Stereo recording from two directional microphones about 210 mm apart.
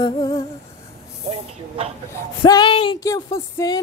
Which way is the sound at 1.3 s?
30° right (ahead or behind).